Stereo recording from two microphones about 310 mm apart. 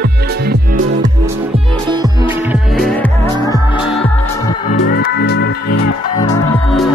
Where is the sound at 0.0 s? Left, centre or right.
Right.